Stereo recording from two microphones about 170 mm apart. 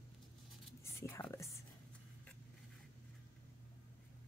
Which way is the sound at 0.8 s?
15° left (ahead or behind).